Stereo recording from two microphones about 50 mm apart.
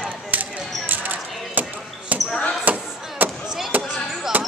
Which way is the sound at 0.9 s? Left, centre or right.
Right.